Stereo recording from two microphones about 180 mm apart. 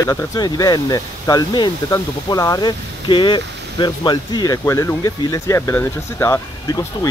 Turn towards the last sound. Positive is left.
turn(degrees=20)  # may be behind; listen again after turning